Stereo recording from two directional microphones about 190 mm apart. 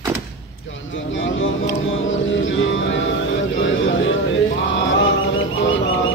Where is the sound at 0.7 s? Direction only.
80° left.